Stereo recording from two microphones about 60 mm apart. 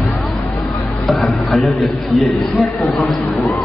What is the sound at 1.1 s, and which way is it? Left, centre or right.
A man's voice, centre.